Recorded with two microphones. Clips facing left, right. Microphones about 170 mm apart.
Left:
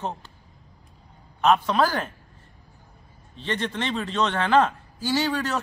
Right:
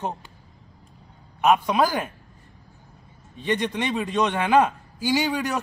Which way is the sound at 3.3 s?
15° right (ahead or behind).